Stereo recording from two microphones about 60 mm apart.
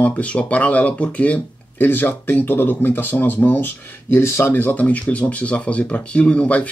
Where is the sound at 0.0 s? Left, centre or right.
Left.